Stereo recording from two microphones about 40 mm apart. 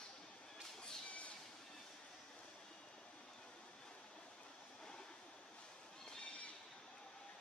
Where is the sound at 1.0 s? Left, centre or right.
Left.